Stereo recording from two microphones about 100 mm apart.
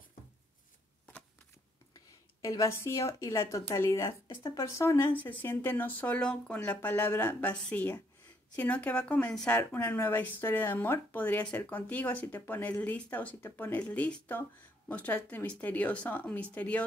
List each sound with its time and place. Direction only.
2.7 s speech: 30° left (ahead or behind); by 9.6 s 10° left (ahead or behind)
9.8 s speech: 20° left (ahead or behind)